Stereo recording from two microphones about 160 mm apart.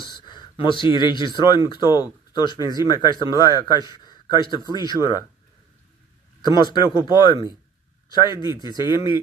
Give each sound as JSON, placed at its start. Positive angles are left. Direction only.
{"t": 0.0, "sound": "speech", "side_deg": 30}
{"t": 6.4, "sound": "speech", "side_deg": 30}